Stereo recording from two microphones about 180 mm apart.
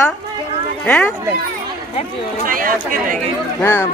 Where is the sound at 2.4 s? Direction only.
50° right (ahead or behind).